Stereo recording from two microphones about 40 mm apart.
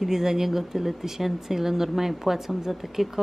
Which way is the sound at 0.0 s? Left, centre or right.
Centre.